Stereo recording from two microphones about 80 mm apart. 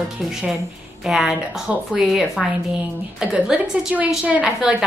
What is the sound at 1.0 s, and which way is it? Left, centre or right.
A woman's voice, centre.